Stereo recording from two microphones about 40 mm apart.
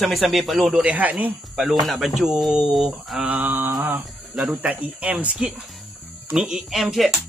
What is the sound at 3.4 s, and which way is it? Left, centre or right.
Mantra, right.